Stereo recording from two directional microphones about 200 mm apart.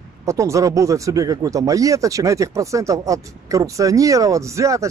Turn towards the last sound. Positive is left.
turn(degrees=-15)  # may be behind; listen again after turning